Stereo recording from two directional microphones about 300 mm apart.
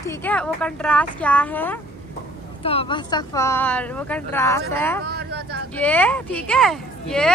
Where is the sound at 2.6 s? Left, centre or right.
Centre.